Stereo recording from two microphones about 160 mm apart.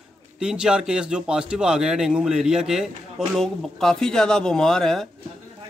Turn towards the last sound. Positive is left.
turn(degrees=0)  # may be behind; listen again after turning